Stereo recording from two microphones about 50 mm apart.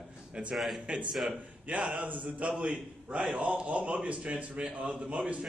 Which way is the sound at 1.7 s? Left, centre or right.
Right.